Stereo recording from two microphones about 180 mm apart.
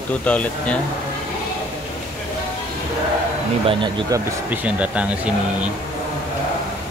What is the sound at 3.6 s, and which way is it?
Speech, 25° right (ahead or behind).